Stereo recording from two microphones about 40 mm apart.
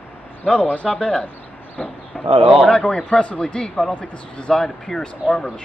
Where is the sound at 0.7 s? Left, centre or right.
Left.